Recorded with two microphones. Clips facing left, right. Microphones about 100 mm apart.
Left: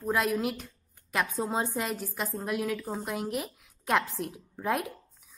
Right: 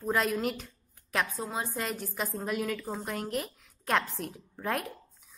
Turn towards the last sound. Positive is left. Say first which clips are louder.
# left 3 dB
turn(degrees=5)  # may be behind; listen again after turning